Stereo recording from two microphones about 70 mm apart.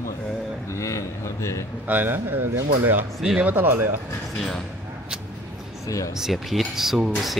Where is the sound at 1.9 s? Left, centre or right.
Right.